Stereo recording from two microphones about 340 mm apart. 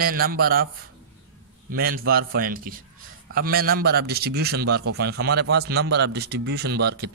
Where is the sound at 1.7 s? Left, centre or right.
Right.